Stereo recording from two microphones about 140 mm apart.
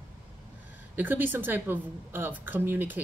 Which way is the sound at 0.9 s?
15° right (ahead or behind).